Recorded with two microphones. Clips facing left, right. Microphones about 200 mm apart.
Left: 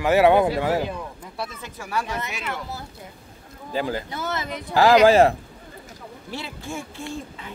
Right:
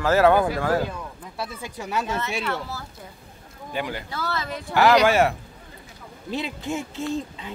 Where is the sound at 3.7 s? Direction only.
35° left (ahead or behind).